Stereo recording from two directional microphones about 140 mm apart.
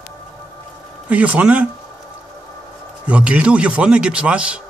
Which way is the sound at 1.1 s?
10° right (ahead or behind).